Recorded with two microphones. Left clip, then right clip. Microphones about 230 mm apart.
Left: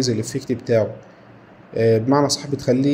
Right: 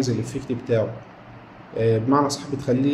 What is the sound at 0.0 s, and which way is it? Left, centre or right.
A man's voice, left.